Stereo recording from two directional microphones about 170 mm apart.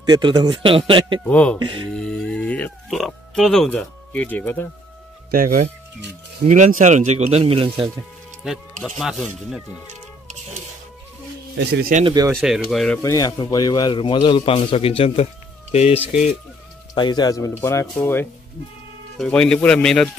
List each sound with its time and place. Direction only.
0.0 s a man's voice: 25° right (ahead or behind)
1.2 s speech: 5° left (ahead or behind)
1.6 s a man's voice: 25° right (ahead or behind)
2.0 s speech: 5° left (ahead or behind)
5.3 s speech: 55° right (ahead or behind); by 7.9 s 30° right (ahead or behind)
8.5 s speech: centre (ahead or behind)
11.5 s speech: 75° right (ahead or behind)
12.1 s a man's voice: 20° right (ahead or behind)
12.4 s speech: centre (ahead or behind)
13.0 s a man's voice: 20° left (ahead or behind); by 16.1 s 35° left (ahead or behind)
16.9 s speech: 25° left (ahead or behind); by 20.1 s 5° left (ahead or behind)